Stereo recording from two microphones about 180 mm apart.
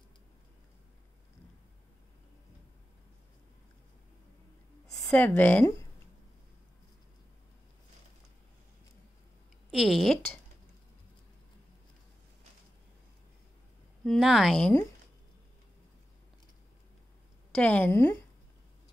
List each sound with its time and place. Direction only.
4.9 s a woman's voice: 15° left (ahead or behind)
9.7 s a woman's voice: centre (ahead or behind)
14.0 s a woman's voice: centre (ahead or behind)
17.6 s speech: 10° left (ahead or behind)